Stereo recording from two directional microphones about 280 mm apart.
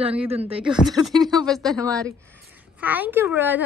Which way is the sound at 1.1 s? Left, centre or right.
Centre.